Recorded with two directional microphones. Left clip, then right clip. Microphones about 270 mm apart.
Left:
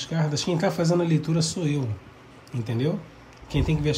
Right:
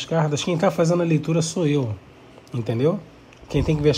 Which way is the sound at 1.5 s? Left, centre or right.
Centre.